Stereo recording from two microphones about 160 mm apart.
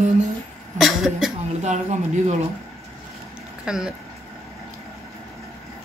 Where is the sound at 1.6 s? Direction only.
45° right (ahead or behind).